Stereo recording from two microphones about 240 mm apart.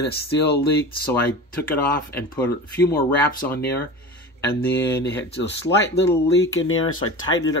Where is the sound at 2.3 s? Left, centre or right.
Centre.